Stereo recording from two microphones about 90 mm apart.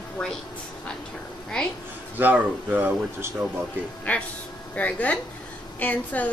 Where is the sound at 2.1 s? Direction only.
20° right (ahead or behind).